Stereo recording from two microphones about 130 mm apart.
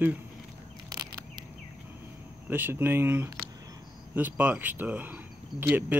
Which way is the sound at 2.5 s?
15° right (ahead or behind).